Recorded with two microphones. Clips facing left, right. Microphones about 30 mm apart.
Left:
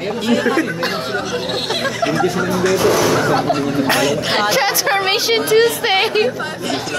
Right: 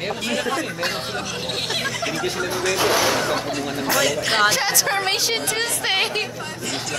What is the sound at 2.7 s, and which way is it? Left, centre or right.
Speech, right.